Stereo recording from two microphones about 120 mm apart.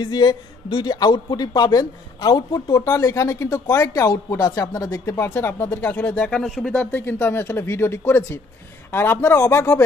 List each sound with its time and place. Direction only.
0.0 s a man's voice: 35° left (ahead or behind)